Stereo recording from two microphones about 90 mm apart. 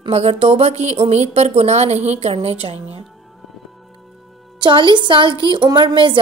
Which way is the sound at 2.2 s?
90° right.